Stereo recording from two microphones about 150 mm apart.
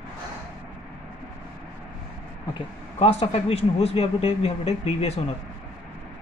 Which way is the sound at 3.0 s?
40° left (ahead or behind).